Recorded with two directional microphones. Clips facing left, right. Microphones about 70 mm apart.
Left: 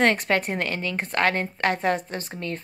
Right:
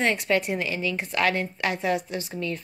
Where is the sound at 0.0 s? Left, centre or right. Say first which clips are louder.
Left 2 dB; left.